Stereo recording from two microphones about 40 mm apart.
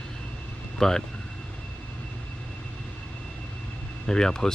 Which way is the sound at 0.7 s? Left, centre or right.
Centre.